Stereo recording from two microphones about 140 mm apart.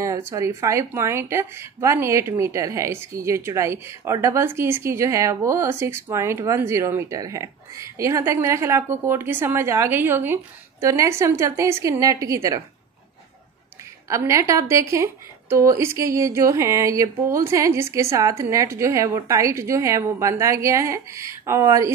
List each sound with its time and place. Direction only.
0.0 s speech: 20° right (ahead or behind)
14.0 s speech: 20° right (ahead or behind)